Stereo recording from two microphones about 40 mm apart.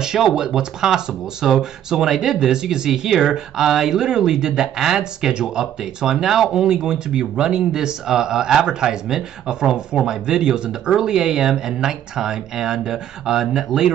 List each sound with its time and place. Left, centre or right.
0.0 s speech: centre